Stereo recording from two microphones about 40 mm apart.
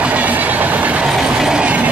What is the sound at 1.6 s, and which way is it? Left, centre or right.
Train, right.